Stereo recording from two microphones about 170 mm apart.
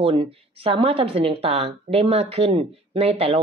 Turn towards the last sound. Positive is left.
turn(degrees=-35)  # may be behind; listen again after turning